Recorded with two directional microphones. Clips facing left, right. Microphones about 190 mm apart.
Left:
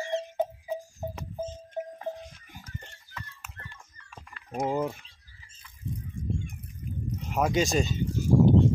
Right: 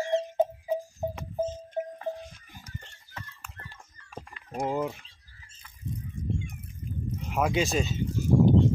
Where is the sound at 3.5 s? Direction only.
40° right (ahead or behind).